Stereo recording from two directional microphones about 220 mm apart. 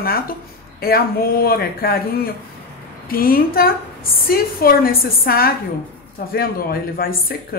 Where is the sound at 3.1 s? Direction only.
40° left (ahead or behind).